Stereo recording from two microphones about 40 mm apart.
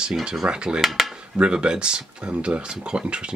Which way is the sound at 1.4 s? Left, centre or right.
Right.